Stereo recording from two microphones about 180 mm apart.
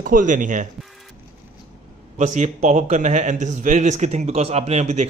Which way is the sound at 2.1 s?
40° right (ahead or behind).